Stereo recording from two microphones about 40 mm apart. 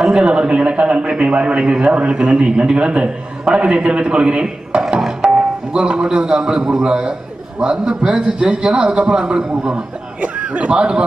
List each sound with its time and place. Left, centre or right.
0.2 s a man's voice: right
10.2 s a man's voice: right